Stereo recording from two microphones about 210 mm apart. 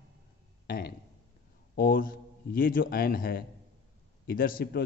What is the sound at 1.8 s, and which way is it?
A man's voice, 40° left (ahead or behind).